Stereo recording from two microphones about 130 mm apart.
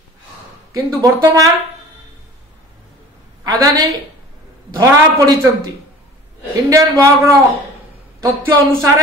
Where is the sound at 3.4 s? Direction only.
30° right (ahead or behind).